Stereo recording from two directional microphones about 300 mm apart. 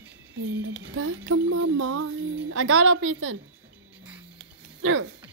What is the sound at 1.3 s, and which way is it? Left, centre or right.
A woman's voice, right.